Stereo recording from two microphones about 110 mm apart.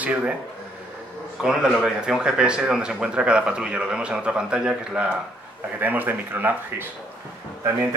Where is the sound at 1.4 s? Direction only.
5° right (ahead or behind).